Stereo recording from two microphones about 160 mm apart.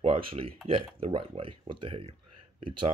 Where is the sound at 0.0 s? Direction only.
35° right (ahead or behind).